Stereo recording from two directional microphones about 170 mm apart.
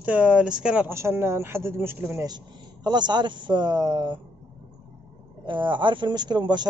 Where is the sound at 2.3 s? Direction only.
25° right (ahead or behind).